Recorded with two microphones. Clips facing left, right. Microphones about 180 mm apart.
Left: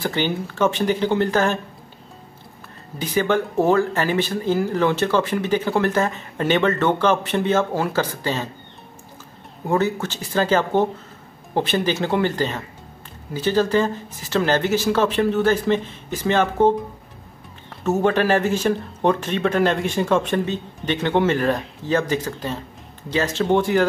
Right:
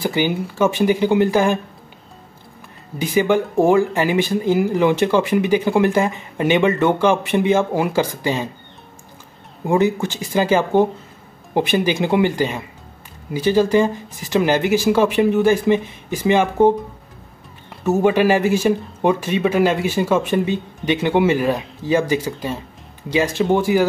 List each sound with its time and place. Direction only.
0.0 s speech: 10° right (ahead or behind)
3.0 s speech: 10° right (ahead or behind)
9.7 s speech: 15° right (ahead or behind)
17.8 s speech: 10° right (ahead or behind)